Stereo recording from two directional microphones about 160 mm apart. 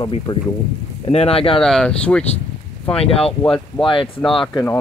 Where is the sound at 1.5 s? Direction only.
5° left (ahead or behind).